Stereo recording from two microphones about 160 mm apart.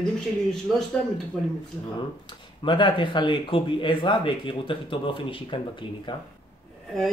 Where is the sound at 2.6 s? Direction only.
30° left (ahead or behind).